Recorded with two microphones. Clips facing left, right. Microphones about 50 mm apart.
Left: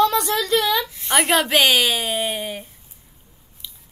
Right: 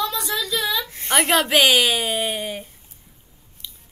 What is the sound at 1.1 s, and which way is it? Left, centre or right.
A woman's voice, centre.